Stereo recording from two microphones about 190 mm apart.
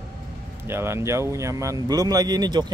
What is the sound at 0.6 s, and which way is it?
Speech, 10° right (ahead or behind).